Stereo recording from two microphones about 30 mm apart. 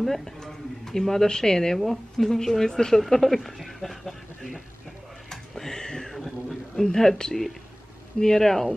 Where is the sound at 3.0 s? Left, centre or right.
Centre.